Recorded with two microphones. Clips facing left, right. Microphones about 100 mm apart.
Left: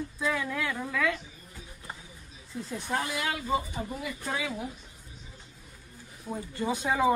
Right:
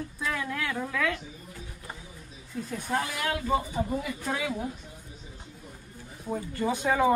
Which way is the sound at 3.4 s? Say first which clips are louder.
Right 3 dB; centre (ahead or behind).